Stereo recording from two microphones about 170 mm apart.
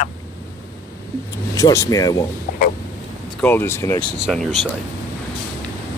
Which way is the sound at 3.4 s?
10° left (ahead or behind).